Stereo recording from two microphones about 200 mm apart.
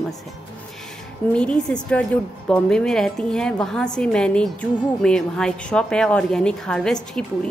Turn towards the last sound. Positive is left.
turn(degrees=5)  # may be behind; listen again after turning